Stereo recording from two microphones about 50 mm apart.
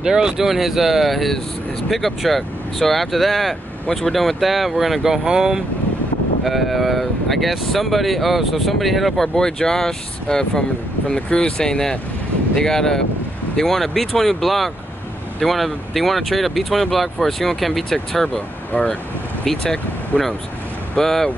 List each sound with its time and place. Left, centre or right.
0.0 s speech: centre
6.4 s speech: centre
9.3 s speech: centre
17.8 s speech: centre
18.7 s speech: left
19.6 s speech: centre